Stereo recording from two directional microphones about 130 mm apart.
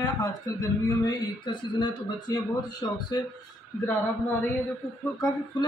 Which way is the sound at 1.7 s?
30° left (ahead or behind).